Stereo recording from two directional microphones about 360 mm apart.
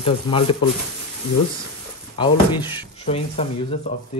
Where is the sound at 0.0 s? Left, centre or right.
Centre.